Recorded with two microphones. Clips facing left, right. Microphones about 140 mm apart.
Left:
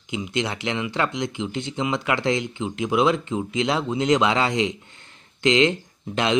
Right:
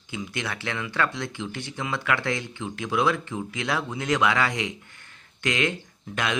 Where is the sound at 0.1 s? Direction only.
20° left (ahead or behind).